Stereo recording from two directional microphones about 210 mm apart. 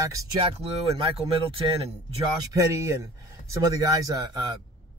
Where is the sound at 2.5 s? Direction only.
15° right (ahead or behind).